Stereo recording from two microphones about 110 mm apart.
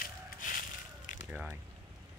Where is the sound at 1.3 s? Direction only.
10° right (ahead or behind).